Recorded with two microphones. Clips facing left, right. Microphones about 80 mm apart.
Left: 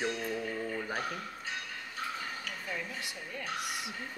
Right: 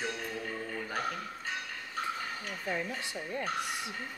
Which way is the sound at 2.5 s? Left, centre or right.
Right.